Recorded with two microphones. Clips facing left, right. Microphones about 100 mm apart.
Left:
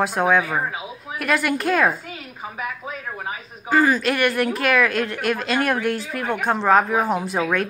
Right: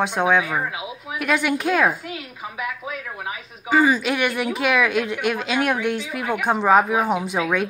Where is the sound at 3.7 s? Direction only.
Centre (ahead or behind).